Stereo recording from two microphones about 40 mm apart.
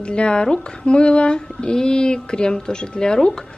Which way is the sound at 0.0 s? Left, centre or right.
Left.